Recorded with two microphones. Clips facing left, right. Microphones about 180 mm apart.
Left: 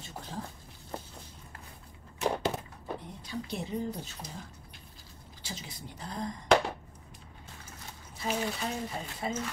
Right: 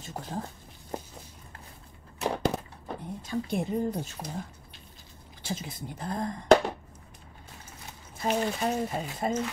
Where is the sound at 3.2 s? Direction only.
50° right (ahead or behind).